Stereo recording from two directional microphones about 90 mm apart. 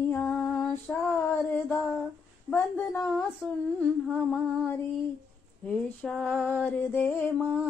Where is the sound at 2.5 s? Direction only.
15° left (ahead or behind).